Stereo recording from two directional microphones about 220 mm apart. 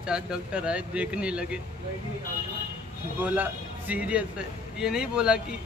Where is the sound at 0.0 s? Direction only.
5° right (ahead or behind).